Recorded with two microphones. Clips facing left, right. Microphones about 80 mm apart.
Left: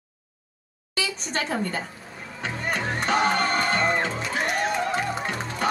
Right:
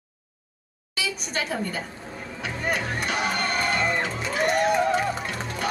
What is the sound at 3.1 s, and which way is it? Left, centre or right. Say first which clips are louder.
Music: left 6 dB; left.